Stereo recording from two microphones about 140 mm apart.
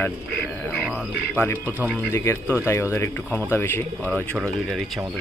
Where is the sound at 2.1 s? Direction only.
20° left (ahead or behind).